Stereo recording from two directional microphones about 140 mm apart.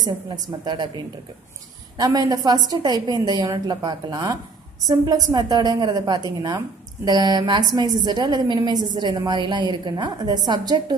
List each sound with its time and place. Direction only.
0.5 s a woman's voice: 35° right (ahead or behind)
2.0 s a woman's voice: 25° right (ahead or behind)